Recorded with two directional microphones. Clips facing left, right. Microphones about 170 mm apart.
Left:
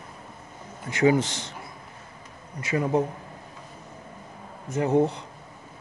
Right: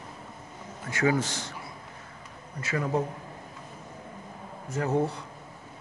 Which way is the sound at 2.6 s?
20° left (ahead or behind).